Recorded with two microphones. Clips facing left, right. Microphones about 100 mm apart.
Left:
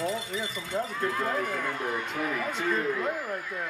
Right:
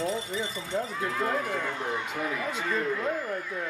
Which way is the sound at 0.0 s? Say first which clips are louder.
Right 1 dB; 30° right (ahead or behind).